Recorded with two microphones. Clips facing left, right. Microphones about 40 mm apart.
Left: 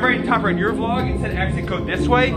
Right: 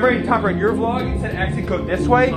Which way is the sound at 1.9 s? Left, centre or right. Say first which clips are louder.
Right 2 dB; left.